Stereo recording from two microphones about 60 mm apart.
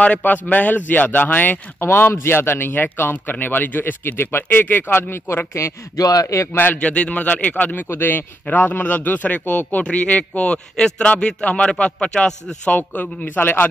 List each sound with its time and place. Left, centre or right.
0.0 s a man's voice: left
5.9 s speech: left
6.5 s a man's voice: left; by 12.5 s centre
12.6 s a man's voice: left